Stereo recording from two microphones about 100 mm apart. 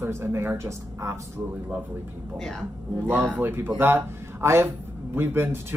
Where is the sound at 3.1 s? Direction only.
20° right (ahead or behind).